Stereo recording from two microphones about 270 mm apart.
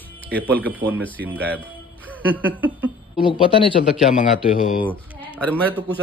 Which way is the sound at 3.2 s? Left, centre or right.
Centre.